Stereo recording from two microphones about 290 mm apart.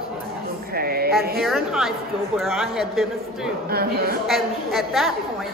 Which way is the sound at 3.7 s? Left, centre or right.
Right.